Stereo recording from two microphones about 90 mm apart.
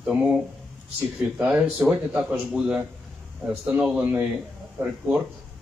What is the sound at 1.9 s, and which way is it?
A man's voice, 10° right (ahead or behind).